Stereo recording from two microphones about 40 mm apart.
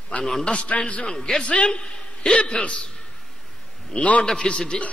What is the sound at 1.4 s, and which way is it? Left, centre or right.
A man's voice, left.